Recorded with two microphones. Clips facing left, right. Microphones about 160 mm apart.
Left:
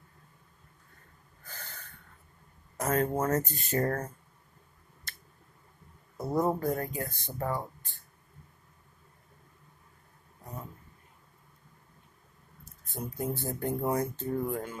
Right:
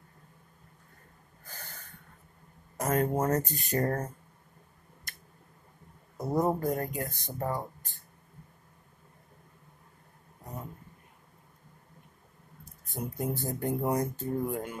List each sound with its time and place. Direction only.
1.5 s snort: 10° right (ahead or behind)
2.8 s speech: 15° right (ahead or behind)
6.1 s speech: 15° right (ahead or behind)
12.9 s speech: 15° right (ahead or behind)